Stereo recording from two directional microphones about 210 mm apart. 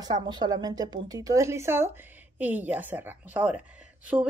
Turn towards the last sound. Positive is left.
turn(degrees=-5)  # may be behind; listen again after turning